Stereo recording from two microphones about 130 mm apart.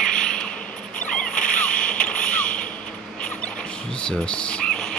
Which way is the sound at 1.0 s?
10° left (ahead or behind).